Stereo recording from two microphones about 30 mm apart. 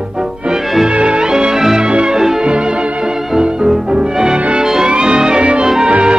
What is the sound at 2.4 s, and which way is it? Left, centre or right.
Music, right.